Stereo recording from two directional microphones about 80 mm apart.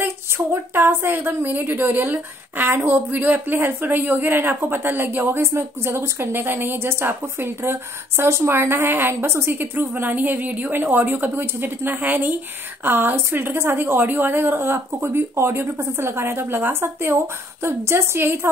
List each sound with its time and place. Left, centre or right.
0.0 s a woman's voice: right